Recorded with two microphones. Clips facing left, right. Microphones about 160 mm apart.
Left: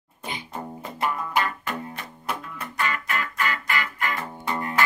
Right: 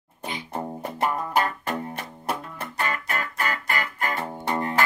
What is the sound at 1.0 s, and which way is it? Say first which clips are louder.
Music: right 2 dB; 40° right (ahead or behind).